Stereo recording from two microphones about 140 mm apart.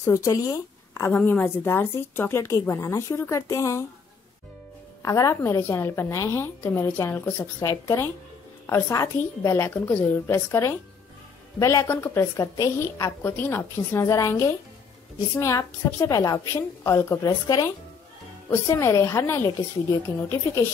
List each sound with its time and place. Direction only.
0.0 s a woman's voice: 20° left (ahead or behind)
5.0 s a woman's voice: 25° left (ahead or behind)